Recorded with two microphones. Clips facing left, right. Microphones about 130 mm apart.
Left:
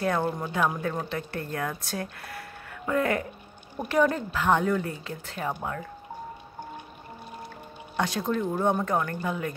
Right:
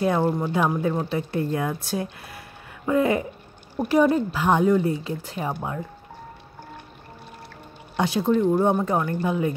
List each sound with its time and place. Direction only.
0.0 s speech: 15° right (ahead or behind)
7.9 s speech: 10° right (ahead or behind)